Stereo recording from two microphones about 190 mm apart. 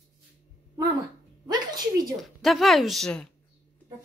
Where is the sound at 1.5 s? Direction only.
20° right (ahead or behind).